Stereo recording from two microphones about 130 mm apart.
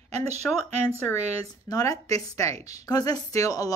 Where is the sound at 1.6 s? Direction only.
30° left (ahead or behind).